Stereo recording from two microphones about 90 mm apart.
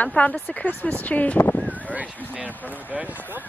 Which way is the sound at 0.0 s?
15° left (ahead or behind).